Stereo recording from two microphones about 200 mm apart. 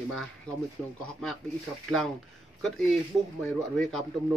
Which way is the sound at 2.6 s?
Centre (ahead or behind).